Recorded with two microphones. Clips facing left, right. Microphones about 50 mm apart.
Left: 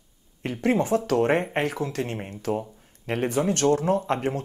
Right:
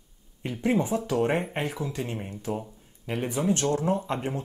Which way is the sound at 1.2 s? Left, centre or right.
Left.